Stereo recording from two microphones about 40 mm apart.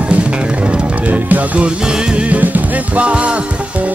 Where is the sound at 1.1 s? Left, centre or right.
Right.